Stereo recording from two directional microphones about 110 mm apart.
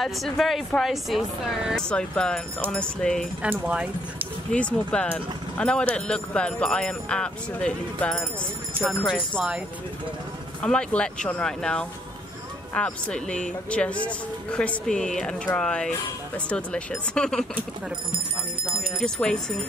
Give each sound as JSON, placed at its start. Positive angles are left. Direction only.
{"t": 0.0, "sound": "speech", "side_deg": 0}
{"t": 3.4, "sound": "speech", "side_deg": -15}
{"t": 4.5, "sound": "speech", "side_deg": 10}
{"t": 9.0, "sound": "speech", "side_deg": -10}
{"t": 10.6, "sound": "speech", "side_deg": 10}
{"t": 18.1, "sound": "speech", "side_deg": -50}
{"t": 18.9, "sound": "speech", "side_deg": 5}